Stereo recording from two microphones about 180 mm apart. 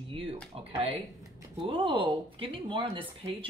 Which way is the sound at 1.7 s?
30° right (ahead or behind).